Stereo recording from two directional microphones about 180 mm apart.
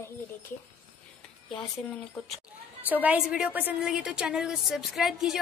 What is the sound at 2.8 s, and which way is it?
A woman's voice, 10° right (ahead or behind).